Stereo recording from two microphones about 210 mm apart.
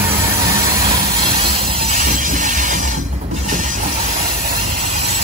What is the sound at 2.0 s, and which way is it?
Train, 40° right (ahead or behind).